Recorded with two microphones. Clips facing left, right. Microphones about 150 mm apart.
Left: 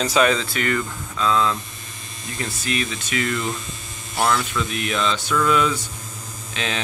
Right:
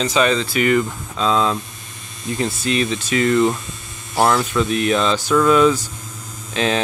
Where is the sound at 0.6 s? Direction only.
15° right (ahead or behind).